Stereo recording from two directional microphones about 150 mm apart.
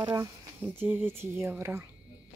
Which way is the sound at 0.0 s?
20° right (ahead or behind).